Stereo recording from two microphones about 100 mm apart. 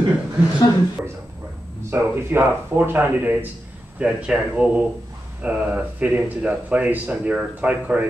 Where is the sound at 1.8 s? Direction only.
20° right (ahead or behind).